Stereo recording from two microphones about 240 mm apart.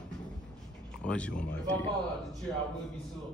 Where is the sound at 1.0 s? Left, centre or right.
Centre.